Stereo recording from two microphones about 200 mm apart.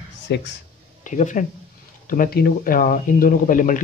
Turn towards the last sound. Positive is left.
turn(degrees=40)  # may be behind; listen again after turning